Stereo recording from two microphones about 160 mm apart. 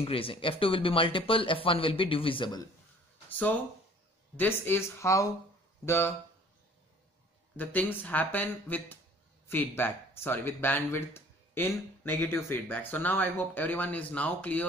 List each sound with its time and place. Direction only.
0.0 s speech: 35° left (ahead or behind)
3.3 s a sound: 10° left (ahead or behind)
4.4 s speech: 15° left (ahead or behind)
7.5 s speech: 10° left (ahead or behind)